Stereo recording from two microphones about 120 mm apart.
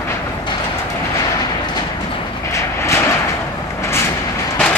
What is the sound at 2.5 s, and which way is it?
Vehicle, 25° left (ahead or behind).